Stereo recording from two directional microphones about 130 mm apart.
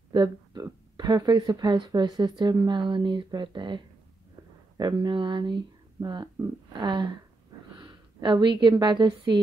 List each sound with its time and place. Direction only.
0.1 s a woman's voice: 30° right (ahead or behind)